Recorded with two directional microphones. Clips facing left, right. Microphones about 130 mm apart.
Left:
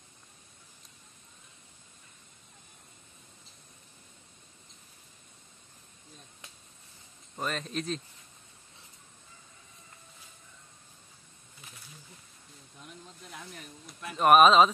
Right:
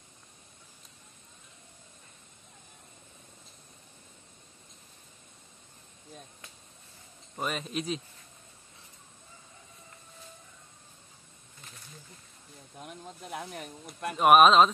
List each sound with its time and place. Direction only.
7.3 s speech: 5° right (ahead or behind)
12.7 s snake: 55° right (ahead or behind)
14.1 s speech: 5° right (ahead or behind)